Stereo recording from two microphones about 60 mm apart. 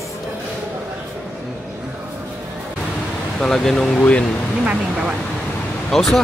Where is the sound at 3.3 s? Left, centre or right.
Centre.